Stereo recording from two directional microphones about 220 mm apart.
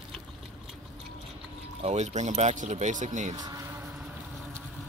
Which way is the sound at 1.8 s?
30° right (ahead or behind).